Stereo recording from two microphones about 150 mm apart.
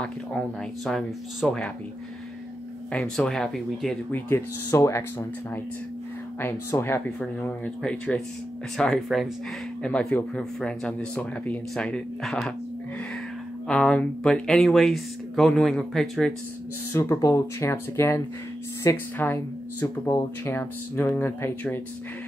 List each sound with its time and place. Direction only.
0.0 s speech: 5° left (ahead or behind)
2.9 s speech: 5° left (ahead or behind)
4.1 s speech: 15° left (ahead or behind)
6.4 s speech: 15° left (ahead or behind)
13.7 s speech: 5° left (ahead or behind)
16.9 s speech: 20° left (ahead or behind)